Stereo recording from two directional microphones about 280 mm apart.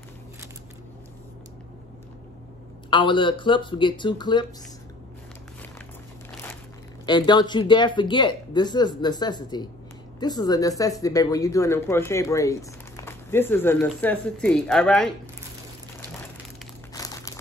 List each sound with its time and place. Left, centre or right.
2.9 s speech: centre
7.1 s speech: centre
16.9 s crumpling: centre